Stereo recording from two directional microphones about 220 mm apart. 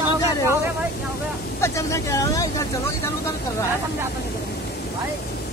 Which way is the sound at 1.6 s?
15° left (ahead or behind).